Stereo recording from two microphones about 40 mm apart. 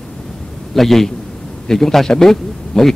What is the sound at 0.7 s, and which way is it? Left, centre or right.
A man's voice, centre.